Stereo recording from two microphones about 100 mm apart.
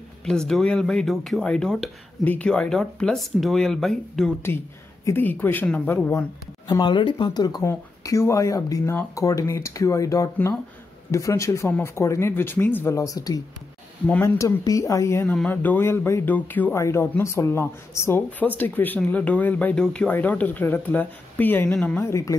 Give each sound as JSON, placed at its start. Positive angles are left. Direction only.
{"t": 0.2, "sound": "speech", "side_deg": 5}
{"t": 5.0, "sound": "speech", "side_deg": 20}
{"t": 6.7, "sound": "speech", "side_deg": 50}
{"t": 7.6, "sound": "speech", "side_deg": 30}
{"t": 12.9, "sound": "speech", "side_deg": 35}
{"t": 14.6, "sound": "speech", "side_deg": 35}
{"t": 15.2, "sound": "speech", "side_deg": 15}
{"t": 16.7, "sound": "speech", "side_deg": 30}
{"t": 22.0, "sound": "speech", "side_deg": 30}